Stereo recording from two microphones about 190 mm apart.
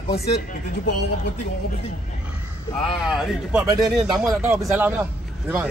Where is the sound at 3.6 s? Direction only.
20° right (ahead or behind).